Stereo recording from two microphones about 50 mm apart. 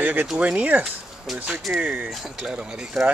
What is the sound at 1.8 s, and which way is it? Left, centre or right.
Speech, right.